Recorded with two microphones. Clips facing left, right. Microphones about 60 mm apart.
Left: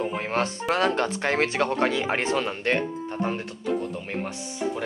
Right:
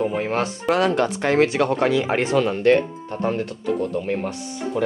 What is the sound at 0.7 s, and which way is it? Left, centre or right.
Speech, left.